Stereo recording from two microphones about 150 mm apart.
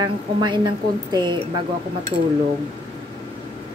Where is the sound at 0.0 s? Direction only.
30° right (ahead or behind).